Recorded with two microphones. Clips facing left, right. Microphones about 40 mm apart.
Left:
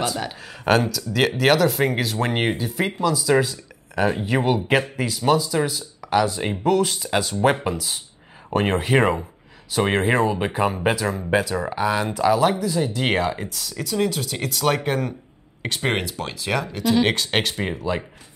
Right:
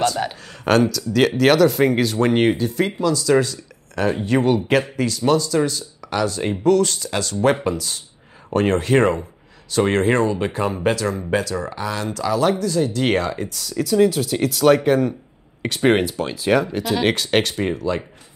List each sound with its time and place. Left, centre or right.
0.7 s speech: centre
16.1 s speech: centre
16.8 s speech: centre